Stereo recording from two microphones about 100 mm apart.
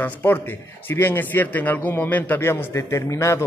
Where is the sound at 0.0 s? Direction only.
20° left (ahead or behind).